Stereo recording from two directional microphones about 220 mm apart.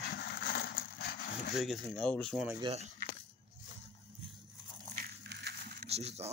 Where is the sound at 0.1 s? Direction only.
45° left (ahead or behind).